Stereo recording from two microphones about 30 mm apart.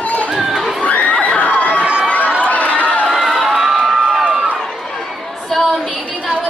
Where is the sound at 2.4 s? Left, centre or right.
Left.